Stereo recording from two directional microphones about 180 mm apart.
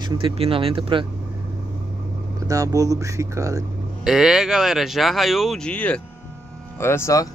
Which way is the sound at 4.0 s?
Centre (ahead or behind).